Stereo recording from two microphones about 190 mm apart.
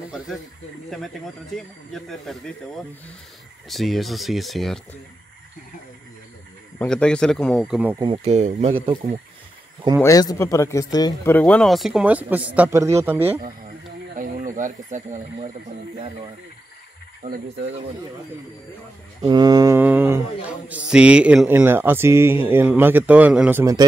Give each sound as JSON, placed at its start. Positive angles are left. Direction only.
{"t": 0.8, "sound": "speech", "side_deg": 0}
{"t": 6.8, "sound": "speech", "side_deg": 5}
{"t": 8.0, "sound": "speech", "side_deg": -30}
{"t": 10.0, "sound": "a man's voice", "side_deg": 15}
{"t": 11.3, "sound": "speech", "side_deg": 5}
{"t": 14.1, "sound": "speech", "side_deg": -45}
{"t": 19.2, "sound": "speech", "side_deg": -20}
{"t": 23.6, "sound": "speech", "side_deg": -20}